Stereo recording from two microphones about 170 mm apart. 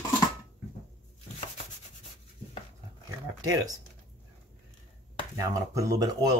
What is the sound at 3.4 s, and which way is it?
Speech, 20° right (ahead or behind).